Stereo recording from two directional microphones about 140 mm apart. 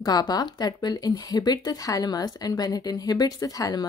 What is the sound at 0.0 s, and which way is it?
Speech, 30° left (ahead or behind).